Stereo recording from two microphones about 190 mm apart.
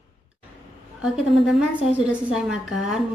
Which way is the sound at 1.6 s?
5° right (ahead or behind).